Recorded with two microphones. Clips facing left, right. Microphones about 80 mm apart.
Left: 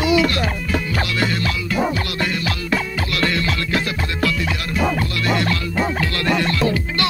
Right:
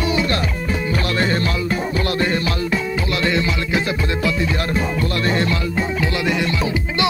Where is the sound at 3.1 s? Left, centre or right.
Right.